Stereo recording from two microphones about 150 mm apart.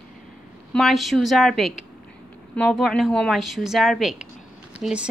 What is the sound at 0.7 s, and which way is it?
A woman's voice, centre (ahead or behind).